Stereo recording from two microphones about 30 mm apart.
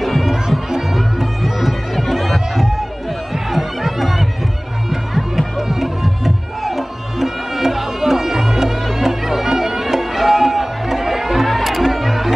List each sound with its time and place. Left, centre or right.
0.0 s music: centre
0.3 s music: centre
1.2 s bagpipes: centre
2.5 s run: centre
3.4 s music: centre